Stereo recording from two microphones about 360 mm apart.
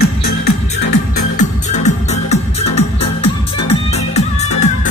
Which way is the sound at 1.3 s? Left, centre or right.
Centre.